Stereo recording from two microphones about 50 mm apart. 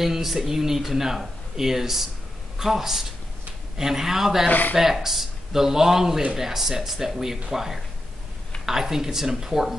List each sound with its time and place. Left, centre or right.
0.0 s speech: centre
4.5 s speech: left
4.7 s speech: centre